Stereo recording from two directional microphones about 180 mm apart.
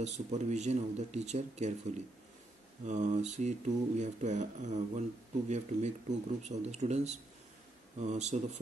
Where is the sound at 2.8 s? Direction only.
40° right (ahead or behind).